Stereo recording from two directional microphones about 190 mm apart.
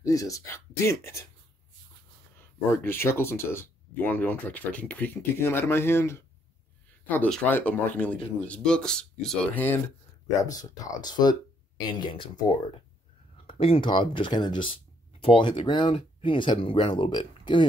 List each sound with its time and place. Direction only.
0.0 s speech: 15° left (ahead or behind)
2.7 s speech: 10° left (ahead or behind)
13.5 s speech: 30° left (ahead or behind)